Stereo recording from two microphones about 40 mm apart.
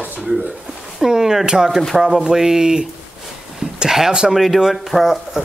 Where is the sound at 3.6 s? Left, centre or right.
Right.